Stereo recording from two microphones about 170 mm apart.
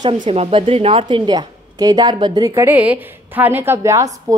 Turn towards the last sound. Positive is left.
turn(degrees=-15)  # may be behind; listen again after turning